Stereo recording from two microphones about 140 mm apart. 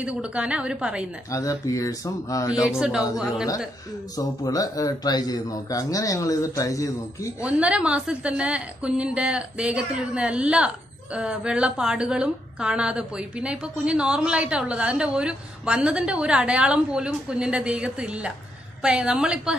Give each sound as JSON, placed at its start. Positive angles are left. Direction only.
{"t": 0.0, "sound": "a woman's voice", "side_deg": -10}
{"t": 1.3, "sound": "speech", "side_deg": 25}
{"t": 2.8, "sound": "a woman's voice", "side_deg": -5}
{"t": 4.5, "sound": "speech", "side_deg": 25}
{"t": 7.4, "sound": "a woman's voice", "side_deg": -10}